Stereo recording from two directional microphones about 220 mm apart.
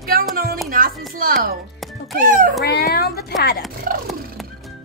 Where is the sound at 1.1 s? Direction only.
40° right (ahead or behind).